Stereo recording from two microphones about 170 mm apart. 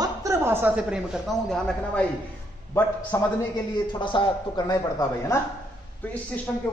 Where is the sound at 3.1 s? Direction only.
15° left (ahead or behind).